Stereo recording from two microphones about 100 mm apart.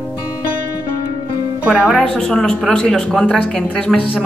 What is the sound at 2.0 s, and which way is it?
Speech, 10° left (ahead or behind).